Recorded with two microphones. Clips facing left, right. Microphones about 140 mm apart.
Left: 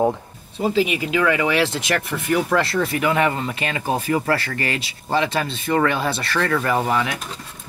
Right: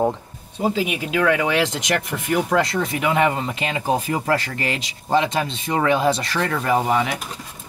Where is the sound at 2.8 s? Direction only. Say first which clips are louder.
Left 2 dB; 5° left (ahead or behind).